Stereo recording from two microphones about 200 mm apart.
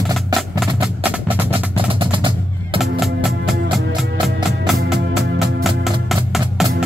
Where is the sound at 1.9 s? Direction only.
25° right (ahead or behind).